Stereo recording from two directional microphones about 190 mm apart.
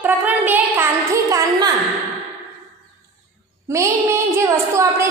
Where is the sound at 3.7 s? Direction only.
15° right (ahead or behind).